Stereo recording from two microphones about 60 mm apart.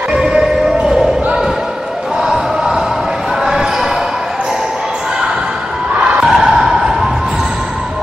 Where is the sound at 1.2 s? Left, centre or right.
Centre.